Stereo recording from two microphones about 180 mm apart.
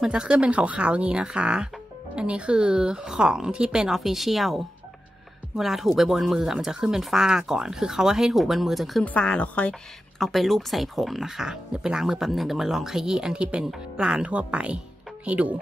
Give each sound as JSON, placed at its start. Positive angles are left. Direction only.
{"t": 0.0, "sound": "speech", "side_deg": -5}